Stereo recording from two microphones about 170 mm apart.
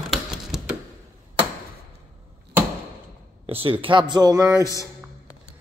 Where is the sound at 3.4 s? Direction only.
35° right (ahead or behind).